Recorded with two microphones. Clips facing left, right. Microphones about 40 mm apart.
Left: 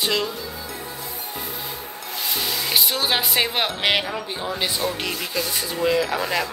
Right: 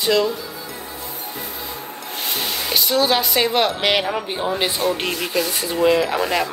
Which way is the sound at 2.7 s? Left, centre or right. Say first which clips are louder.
Right 5 dB; centre.